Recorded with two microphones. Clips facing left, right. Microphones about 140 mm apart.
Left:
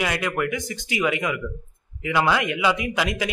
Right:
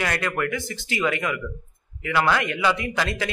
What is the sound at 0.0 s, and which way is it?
Speech, 15° left (ahead or behind).